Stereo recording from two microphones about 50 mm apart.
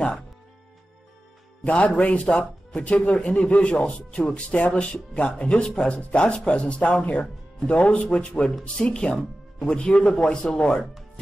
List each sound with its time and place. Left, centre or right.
1.6 s speech: left